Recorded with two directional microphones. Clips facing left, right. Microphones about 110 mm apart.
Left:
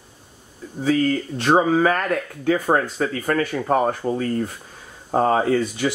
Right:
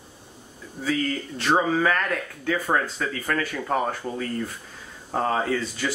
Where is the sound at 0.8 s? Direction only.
40° left (ahead or behind).